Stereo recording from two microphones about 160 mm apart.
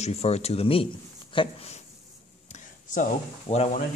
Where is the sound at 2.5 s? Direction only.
50° left (ahead or behind).